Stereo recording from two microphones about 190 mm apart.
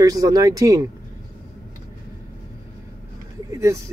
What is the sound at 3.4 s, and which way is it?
Speech, 15° right (ahead or behind).